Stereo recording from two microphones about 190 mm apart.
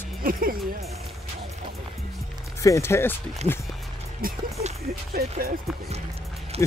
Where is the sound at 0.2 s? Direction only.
50° right (ahead or behind).